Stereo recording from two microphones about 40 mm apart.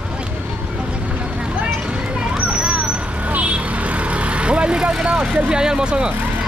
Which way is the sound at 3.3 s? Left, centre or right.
Right.